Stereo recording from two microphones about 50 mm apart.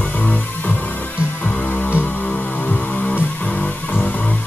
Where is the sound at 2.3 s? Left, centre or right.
Left.